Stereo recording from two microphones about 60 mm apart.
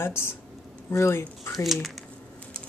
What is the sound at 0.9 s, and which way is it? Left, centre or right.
Speech, left.